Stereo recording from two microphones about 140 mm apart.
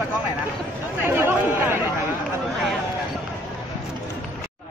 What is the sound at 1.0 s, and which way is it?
Speech, 15° right (ahead or behind).